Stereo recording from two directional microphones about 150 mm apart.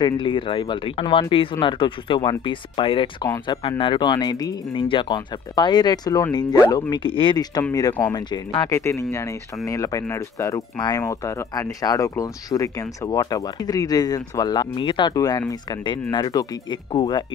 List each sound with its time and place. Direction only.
0.0 s speech: 35° left (ahead or behind)